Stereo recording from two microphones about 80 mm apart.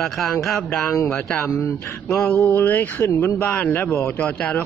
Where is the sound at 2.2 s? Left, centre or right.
Centre.